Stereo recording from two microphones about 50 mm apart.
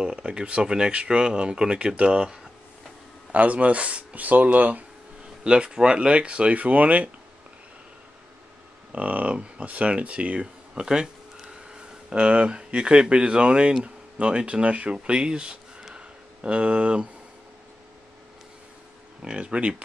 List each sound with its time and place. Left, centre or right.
0.0 s speech: centre
5.4 s speech: centre
8.9 s speech: right
10.4 s speech: centre
19.2 s speech: right